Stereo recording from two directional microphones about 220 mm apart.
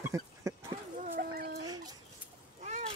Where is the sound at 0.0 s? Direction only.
15° right (ahead or behind).